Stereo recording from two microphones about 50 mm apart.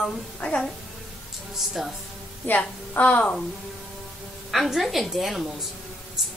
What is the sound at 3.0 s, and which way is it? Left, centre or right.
Speech, left.